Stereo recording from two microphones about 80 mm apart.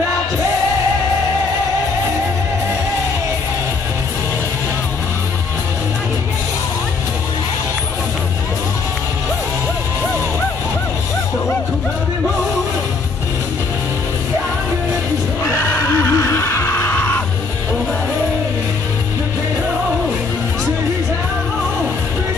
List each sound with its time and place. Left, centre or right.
15.4 s neigh: left